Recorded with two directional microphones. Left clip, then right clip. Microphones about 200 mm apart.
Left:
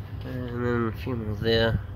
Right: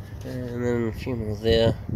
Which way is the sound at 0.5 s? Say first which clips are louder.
Right 1 dB; 15° right (ahead or behind).